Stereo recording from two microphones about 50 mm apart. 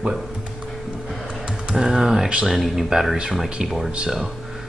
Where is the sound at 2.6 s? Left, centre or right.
Centre.